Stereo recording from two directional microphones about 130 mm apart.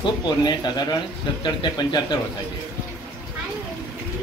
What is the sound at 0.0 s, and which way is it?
Speech, 35° left (ahead or behind).